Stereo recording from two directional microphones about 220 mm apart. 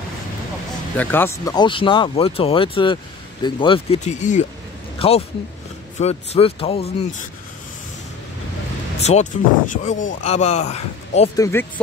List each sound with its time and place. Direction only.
0.9 s speech: 10° left (ahead or behind); by 7.2 s 25° left (ahead or behind)
9.0 s speech: 30° left (ahead or behind)
11.3 s speech: 15° left (ahead or behind)